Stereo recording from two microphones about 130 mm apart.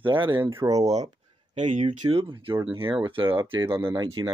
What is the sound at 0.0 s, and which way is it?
Speech, 40° right (ahead or behind).